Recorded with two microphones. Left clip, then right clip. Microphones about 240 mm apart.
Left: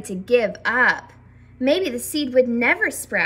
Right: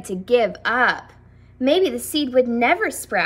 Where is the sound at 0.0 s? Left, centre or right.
Centre.